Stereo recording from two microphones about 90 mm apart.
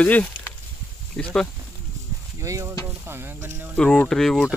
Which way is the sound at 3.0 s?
25° right (ahead or behind).